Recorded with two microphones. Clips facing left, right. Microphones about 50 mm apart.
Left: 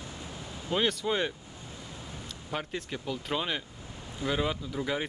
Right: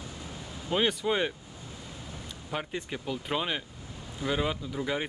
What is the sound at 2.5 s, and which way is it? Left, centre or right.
Speech, centre.